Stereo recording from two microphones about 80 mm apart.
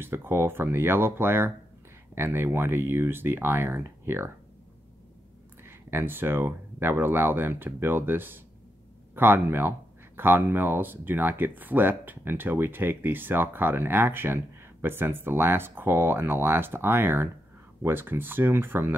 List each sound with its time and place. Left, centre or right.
0.0 s speech: right
5.6 s speech: right